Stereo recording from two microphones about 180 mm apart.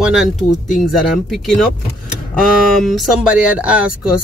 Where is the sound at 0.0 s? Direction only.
5° right (ahead or behind).